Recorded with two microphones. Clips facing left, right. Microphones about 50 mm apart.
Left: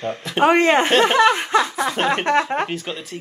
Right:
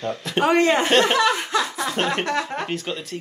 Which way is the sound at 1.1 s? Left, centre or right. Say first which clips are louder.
Left 4 dB; left.